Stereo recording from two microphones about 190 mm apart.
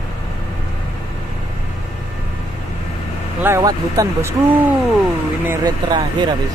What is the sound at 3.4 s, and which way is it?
Speech, 15° right (ahead or behind).